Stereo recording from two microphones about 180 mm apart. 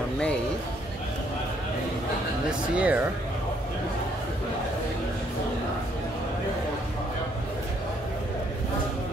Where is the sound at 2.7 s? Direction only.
5° right (ahead or behind).